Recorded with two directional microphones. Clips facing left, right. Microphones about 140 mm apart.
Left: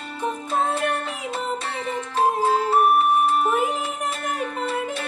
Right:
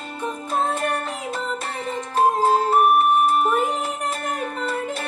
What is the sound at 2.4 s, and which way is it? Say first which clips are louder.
Music: right 2 dB; 45° right (ahead or behind).